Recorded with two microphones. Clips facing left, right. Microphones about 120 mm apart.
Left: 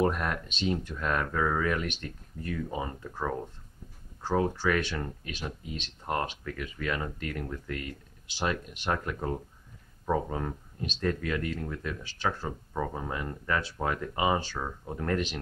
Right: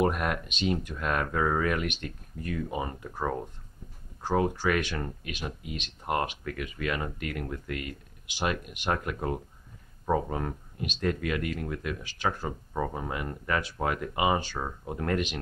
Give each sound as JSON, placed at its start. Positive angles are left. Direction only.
{"t": 0.0, "sound": "speech", "side_deg": -15}